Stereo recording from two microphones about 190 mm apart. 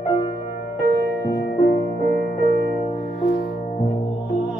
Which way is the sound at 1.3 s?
60° left (ahead or behind).